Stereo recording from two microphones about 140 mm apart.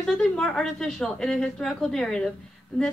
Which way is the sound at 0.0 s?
5° left (ahead or behind).